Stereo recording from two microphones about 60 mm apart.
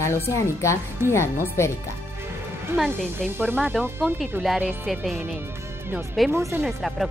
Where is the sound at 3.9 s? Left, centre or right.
Right.